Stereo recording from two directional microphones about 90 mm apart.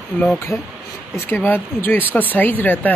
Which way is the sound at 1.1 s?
25° left (ahead or behind).